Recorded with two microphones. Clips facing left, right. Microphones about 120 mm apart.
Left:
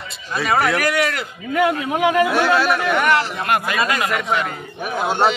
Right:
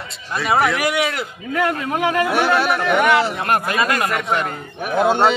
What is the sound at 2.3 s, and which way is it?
Speech, 20° right (ahead or behind).